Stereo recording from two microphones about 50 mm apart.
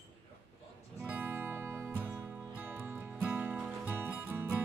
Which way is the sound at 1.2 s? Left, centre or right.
Right.